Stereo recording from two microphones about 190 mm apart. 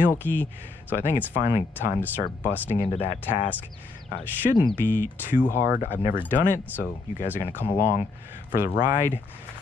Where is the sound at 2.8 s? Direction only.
30° left (ahead or behind).